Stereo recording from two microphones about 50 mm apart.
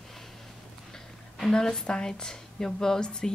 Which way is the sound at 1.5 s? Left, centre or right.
Centre.